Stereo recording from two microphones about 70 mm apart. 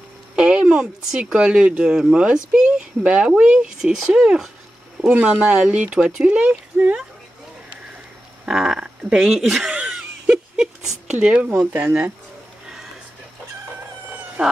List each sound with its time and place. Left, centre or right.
0.4 s speech: centre
8.5 s speech: centre; by 12.1 s right
14.4 s speech: centre